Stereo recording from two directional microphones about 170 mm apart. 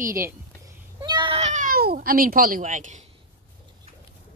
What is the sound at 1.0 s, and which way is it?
Speech, 30° right (ahead or behind).